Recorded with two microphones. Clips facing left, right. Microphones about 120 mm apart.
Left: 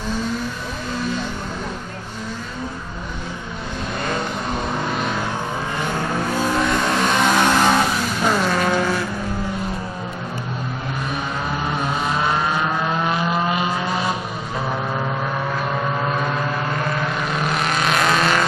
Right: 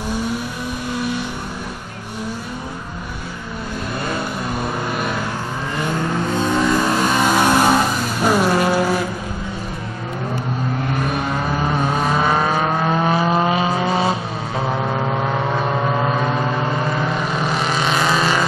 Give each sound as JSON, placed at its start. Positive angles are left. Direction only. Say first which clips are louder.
{"t": 0.1, "sound": "vehicle", "louder": "right 1 dB", "side_deg": -10}
{"t": 0.9, "sound": "music", "louder": "right 1 dB", "side_deg": -10}
{"t": 6.3, "sound": "vehicle", "louder": "right 3 dB", "side_deg": 5}
{"t": 11.9, "sound": "vehicle", "louder": "right 3 dB", "side_deg": -45}
{"t": 17.3, "sound": "vehicle", "louder": "right 1 dB", "side_deg": 0}